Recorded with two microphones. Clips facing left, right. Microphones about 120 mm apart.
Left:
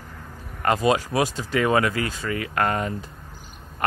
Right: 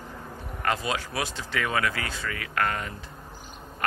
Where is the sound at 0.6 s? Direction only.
40° left (ahead or behind).